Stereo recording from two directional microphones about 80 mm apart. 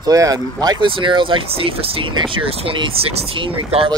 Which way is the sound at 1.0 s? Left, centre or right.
Right.